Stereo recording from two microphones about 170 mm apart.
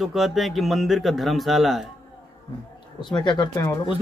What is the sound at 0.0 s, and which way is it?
Speech, centre (ahead or behind).